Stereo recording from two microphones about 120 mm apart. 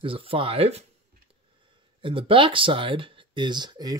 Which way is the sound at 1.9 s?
45° right (ahead or behind).